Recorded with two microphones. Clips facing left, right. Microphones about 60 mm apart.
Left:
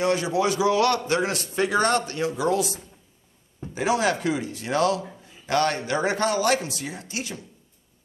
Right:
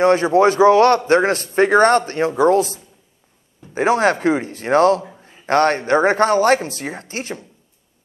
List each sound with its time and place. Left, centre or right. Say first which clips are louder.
0.0 s a man's voice: right 9 dB; right